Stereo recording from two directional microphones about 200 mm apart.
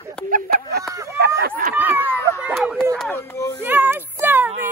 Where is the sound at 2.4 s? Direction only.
5° right (ahead or behind).